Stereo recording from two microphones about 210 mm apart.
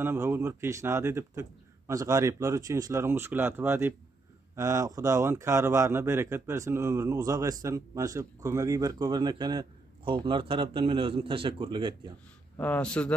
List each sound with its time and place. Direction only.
0.0 s speech: 10° right (ahead or behind)
12.5 s a man's voice: 5° left (ahead or behind)